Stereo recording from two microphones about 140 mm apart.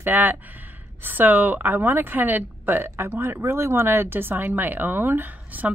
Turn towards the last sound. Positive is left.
turn(degrees=-10)  # may be behind; listen again after turning